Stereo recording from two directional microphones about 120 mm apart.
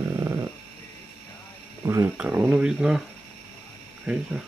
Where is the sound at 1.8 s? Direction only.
25° right (ahead or behind).